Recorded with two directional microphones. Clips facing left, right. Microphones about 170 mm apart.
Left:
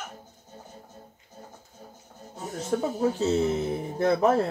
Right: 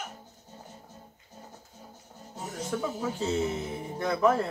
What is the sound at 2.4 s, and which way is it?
Speech, 40° left (ahead or behind).